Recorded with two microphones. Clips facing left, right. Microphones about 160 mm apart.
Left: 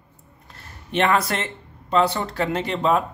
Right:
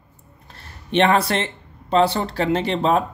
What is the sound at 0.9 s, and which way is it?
Speech, 30° right (ahead or behind).